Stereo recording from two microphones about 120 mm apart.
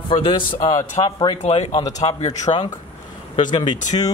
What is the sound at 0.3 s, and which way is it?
Speech, 35° left (ahead or behind).